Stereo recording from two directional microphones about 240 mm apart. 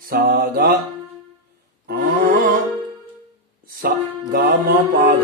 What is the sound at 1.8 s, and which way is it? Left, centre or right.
Music, right.